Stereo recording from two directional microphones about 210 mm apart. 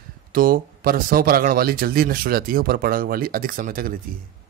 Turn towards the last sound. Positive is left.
turn(degrees=-40)  # may be behind; listen again after turning